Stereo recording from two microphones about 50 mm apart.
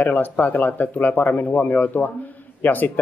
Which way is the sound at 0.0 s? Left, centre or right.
Left.